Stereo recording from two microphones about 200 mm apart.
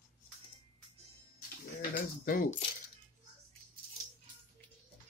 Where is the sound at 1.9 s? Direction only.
45° left (ahead or behind).